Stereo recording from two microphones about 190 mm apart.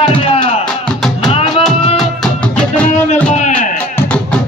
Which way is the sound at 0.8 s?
Centre (ahead or behind).